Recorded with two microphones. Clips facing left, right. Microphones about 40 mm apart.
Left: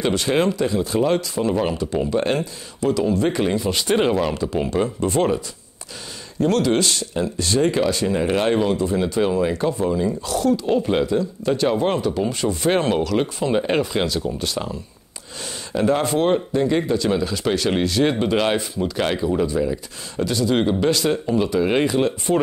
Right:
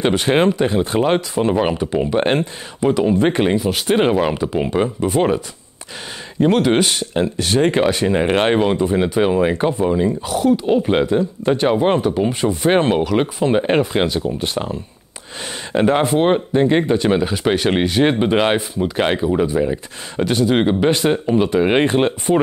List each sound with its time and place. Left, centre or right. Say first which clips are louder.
0.0 s speech: right 4 dB; right
6.6 s speech: right 3 dB; right
7.2 s speech: right 4 dB; right
10.2 s speech: right 3 dB; right